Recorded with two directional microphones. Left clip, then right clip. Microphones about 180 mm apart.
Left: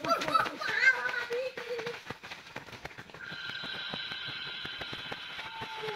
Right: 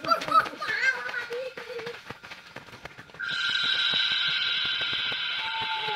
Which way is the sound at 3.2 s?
45° right (ahead or behind).